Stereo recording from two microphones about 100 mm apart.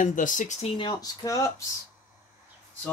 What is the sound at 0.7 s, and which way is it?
Speech, 40° left (ahead or behind).